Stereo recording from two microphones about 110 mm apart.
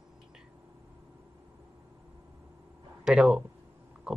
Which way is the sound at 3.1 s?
5° right (ahead or behind).